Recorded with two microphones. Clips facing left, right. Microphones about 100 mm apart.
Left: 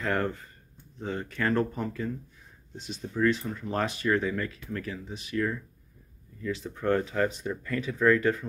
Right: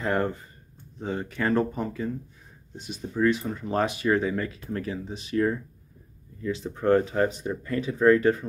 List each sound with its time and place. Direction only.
0.0 s speech: 15° right (ahead or behind)
2.7 s speech: 10° right (ahead or behind); by 8.5 s 25° right (ahead or behind)